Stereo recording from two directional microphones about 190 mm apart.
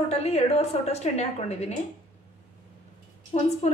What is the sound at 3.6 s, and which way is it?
Speech, 35° left (ahead or behind).